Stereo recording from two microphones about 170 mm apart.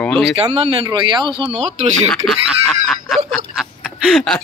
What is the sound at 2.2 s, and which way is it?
Speech, centre (ahead or behind).